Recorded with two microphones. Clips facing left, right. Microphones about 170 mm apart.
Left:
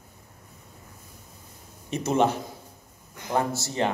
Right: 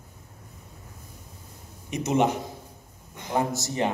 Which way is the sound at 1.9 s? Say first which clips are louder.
Even; 15° right (ahead or behind).